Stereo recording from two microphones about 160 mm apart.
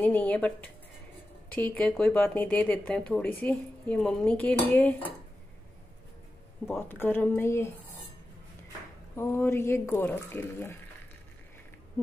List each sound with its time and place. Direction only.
0.0 s speech: 10° left (ahead or behind)
6.6 s speech: 15° left (ahead or behind)
9.1 s speech: 15° left (ahead or behind)